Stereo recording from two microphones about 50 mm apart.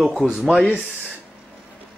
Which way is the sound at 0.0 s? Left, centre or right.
Centre.